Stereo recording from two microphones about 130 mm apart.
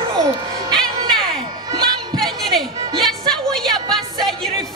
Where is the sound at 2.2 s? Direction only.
Centre (ahead or behind).